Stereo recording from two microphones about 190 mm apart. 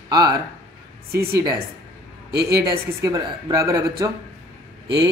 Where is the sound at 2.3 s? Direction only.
55° right (ahead or behind).